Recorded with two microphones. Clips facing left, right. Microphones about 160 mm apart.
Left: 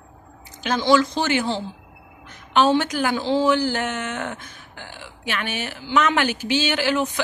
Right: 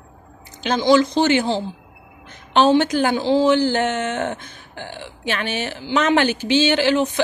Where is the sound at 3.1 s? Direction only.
15° right (ahead or behind).